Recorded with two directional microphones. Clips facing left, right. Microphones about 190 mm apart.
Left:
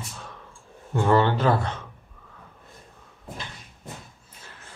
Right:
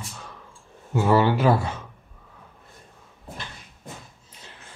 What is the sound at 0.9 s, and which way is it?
Speech, 5° right (ahead or behind).